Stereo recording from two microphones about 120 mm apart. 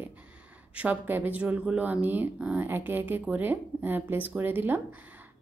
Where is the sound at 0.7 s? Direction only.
15° right (ahead or behind).